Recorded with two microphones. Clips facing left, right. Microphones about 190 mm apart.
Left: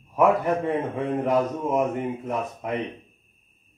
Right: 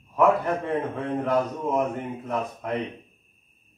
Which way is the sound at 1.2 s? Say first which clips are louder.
Left 1 dB; 15° left (ahead or behind).